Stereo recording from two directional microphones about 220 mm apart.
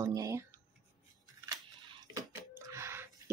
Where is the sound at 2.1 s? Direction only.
10° right (ahead or behind).